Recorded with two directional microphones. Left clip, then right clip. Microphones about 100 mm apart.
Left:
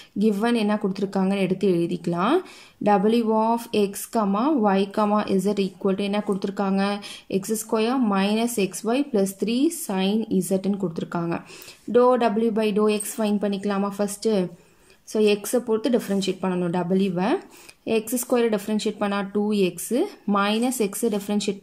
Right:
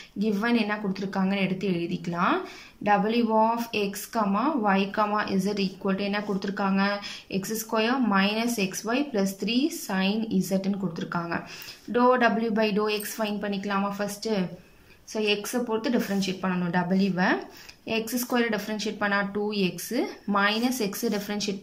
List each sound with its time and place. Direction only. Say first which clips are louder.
0.2 s a woman's voice: left 4 dB; 50° left (ahead or behind)